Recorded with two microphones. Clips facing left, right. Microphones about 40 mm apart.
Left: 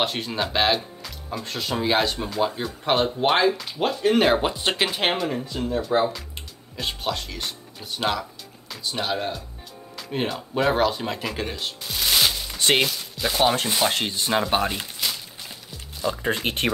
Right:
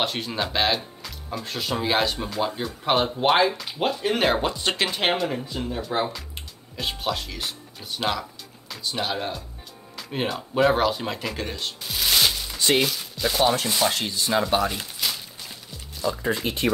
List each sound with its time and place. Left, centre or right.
0.0 s speech: centre
4.4 s speech: centre
4.8 s speech: centre
12.5 s a sound: left
13.2 s speech: centre
13.7 s rub: left
15.0 s a sound: centre
16.1 s rub: left
16.4 s speech: left